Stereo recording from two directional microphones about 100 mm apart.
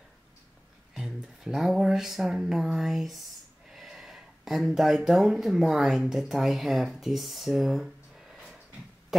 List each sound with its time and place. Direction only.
0.9 s speech: 5° right (ahead or behind)